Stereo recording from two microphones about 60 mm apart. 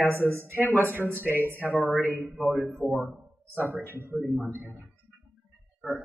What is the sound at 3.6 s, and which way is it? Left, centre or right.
Speech, right.